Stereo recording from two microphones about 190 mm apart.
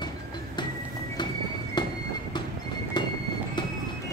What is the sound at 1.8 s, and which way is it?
Train, 25° left (ahead or behind).